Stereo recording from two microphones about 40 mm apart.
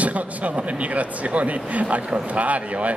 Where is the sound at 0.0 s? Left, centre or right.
Right.